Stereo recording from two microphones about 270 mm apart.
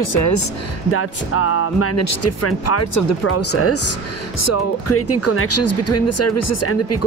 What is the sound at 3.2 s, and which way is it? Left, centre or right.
Speech, left.